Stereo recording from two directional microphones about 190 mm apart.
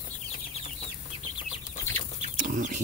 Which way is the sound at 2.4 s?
45° right (ahead or behind).